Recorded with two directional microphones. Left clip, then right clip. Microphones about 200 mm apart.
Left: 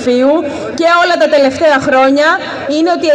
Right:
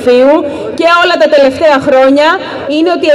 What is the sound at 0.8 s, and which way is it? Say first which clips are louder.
Speech: right 2 dB; 55° right (ahead or behind).